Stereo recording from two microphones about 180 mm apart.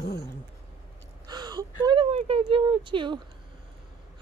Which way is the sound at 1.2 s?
25° right (ahead or behind).